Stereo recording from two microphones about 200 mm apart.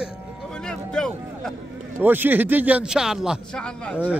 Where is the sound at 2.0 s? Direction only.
10° right (ahead or behind).